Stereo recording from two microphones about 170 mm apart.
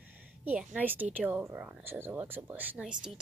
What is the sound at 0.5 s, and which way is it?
Speech, 10° right (ahead or behind).